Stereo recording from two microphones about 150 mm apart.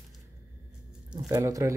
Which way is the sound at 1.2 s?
20° right (ahead or behind).